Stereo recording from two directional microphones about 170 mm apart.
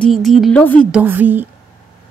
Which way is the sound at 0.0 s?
Centre (ahead or behind).